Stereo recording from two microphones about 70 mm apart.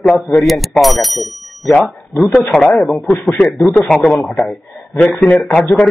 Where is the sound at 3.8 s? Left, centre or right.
Centre.